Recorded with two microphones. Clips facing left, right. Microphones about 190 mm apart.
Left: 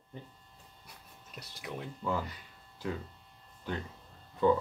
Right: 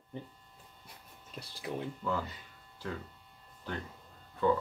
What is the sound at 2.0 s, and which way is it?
Speech, 10° left (ahead or behind).